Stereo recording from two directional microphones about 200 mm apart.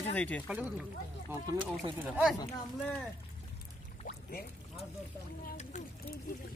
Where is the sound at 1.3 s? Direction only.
20° right (ahead or behind).